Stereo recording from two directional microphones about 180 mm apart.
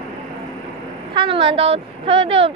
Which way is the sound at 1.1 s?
30° right (ahead or behind).